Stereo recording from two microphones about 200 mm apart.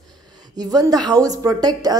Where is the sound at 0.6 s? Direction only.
20° right (ahead or behind).